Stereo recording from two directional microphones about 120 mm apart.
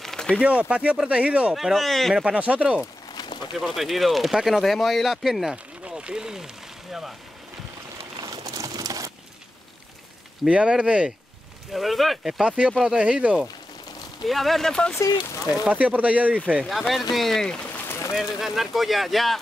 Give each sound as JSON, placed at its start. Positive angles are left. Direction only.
{"t": 0.0, "sound": "a sound", "side_deg": 5}
{"t": 0.4, "sound": "speech", "side_deg": -10}
{"t": 3.2, "sound": "a sound", "side_deg": 40}
{"t": 3.6, "sound": "speech", "side_deg": 0}
{"t": 8.2, "sound": "a sound", "side_deg": -30}
{"t": 10.4, "sound": "speech", "side_deg": -10}
{"t": 15.0, "sound": "speech", "side_deg": 25}
{"t": 15.6, "sound": "speech", "side_deg": -10}
{"t": 16.6, "sound": "speech", "side_deg": 0}